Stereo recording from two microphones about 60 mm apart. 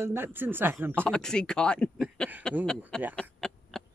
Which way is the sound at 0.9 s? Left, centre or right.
Centre.